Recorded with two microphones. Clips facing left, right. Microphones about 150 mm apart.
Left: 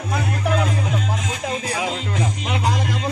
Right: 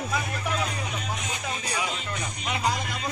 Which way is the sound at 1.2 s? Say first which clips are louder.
Left 7 dB; 90° left.